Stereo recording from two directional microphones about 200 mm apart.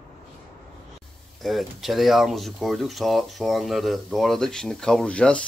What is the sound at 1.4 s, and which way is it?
Speech, centre (ahead or behind).